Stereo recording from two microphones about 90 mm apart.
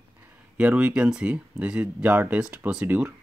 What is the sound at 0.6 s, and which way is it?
Speech, 15° right (ahead or behind).